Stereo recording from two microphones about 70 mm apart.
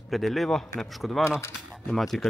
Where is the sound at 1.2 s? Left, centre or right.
Left.